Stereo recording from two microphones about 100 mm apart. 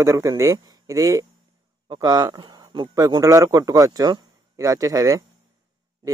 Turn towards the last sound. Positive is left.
turn(degrees=-35)  # may be behind; listen again after turning